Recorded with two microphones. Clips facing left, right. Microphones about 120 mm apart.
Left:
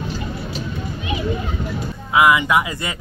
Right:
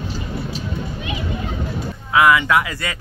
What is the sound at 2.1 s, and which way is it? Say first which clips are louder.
Speech: even; 15° left (ahead or behind).